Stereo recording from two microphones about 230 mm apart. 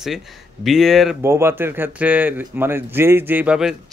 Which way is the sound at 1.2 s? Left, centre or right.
Centre.